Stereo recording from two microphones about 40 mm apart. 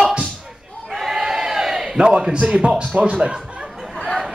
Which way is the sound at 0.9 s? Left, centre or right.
Centre.